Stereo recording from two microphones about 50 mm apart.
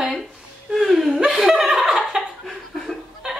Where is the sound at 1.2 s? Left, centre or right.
Centre.